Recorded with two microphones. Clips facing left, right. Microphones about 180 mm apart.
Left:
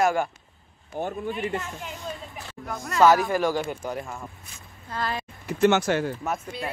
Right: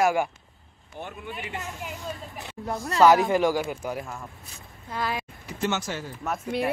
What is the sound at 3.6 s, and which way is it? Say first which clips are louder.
Speech: even; 5° right (ahead or behind).